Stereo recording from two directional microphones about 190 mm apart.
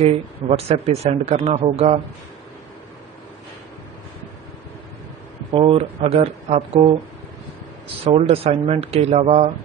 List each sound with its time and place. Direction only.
0.5 s speech: 35° right (ahead or behind)
5.5 s speech: 30° right (ahead or behind)
8.0 s speech: 30° right (ahead or behind)